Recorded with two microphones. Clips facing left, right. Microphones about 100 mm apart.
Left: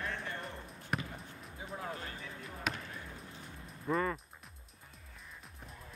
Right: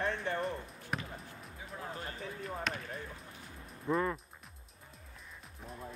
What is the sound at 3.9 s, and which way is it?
Speech, 5° right (ahead or behind).